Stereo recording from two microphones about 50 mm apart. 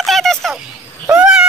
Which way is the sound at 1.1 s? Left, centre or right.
Centre.